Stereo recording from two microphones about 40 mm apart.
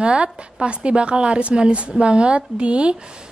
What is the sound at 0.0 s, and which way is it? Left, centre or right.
A woman's voice, right.